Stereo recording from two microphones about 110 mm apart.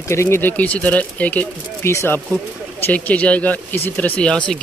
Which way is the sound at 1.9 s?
25° left (ahead or behind).